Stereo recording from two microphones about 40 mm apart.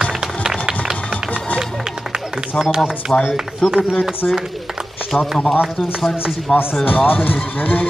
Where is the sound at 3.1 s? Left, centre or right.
Left.